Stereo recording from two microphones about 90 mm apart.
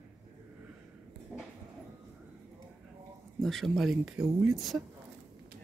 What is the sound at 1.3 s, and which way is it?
Train, 10° right (ahead or behind).